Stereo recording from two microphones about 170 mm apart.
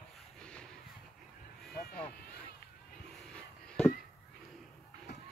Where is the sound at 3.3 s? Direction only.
5° left (ahead or behind).